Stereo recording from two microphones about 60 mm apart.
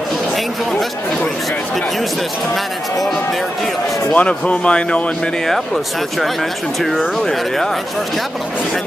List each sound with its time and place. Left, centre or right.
4.1 s speech: left
6.8 s speech: centre